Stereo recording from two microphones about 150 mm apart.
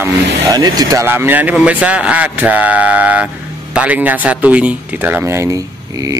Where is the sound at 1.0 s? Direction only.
15° right (ahead or behind).